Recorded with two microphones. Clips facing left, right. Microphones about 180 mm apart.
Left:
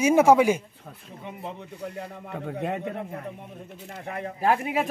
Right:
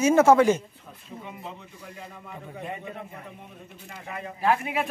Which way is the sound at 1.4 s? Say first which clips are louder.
Left 6 dB; 70° left (ahead or behind).